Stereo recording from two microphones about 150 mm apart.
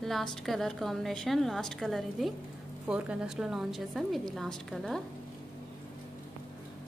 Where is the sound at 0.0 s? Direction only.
5° left (ahead or behind).